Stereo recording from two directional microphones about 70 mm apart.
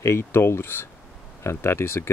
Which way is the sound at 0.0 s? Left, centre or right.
Left.